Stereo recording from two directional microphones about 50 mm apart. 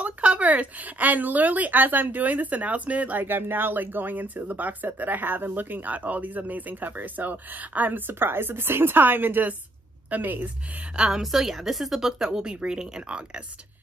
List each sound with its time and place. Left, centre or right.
0.0 s speech: right
8.1 s a woman's voice: right
11.1 s a woman's voice: centre